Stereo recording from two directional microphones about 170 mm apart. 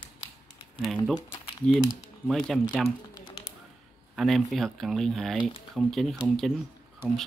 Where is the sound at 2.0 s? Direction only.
Centre (ahead or behind).